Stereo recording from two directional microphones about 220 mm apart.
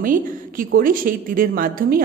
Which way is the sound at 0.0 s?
40° right (ahead or behind).